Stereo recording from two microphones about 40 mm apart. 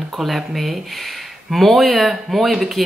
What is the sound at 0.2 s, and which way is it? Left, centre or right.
Speech, centre.